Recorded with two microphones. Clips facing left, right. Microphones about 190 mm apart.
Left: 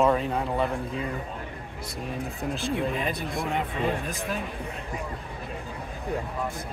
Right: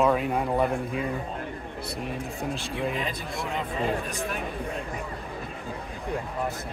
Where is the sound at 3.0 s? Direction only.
55° left (ahead or behind).